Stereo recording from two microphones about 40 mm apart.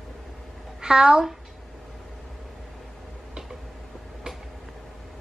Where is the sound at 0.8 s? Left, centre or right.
Centre.